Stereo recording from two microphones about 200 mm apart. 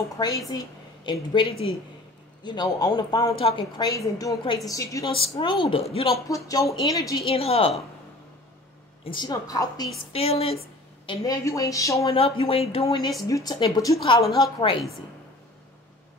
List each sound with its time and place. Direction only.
0.5 s a woman's voice: 20° left (ahead or behind)
7.2 s a woman's voice: 30° left (ahead or behind)
9.0 s a woman's voice: 25° left (ahead or behind)
10.1 s a woman's voice: 30° left (ahead or behind)
11.1 s a woman's voice: 15° left (ahead or behind)
12.1 s a woman's voice: 30° left (ahead or behind)